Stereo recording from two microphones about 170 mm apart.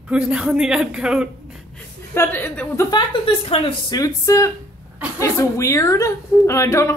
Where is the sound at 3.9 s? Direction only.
20° left (ahead or behind).